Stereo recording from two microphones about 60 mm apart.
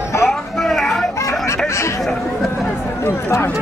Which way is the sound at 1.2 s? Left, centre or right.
Left.